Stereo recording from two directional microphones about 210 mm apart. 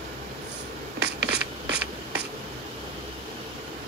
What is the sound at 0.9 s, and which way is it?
Writing, 55° right (ahead or behind).